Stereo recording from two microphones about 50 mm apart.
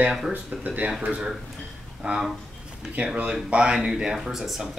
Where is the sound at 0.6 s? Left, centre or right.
Right.